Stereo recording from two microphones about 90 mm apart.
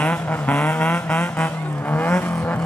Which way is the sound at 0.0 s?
15° left (ahead or behind).